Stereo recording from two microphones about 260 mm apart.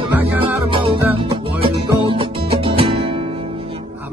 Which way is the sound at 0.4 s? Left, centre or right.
Centre.